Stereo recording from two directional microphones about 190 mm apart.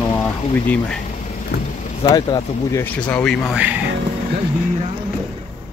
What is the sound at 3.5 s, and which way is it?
Speech, 5° right (ahead or behind).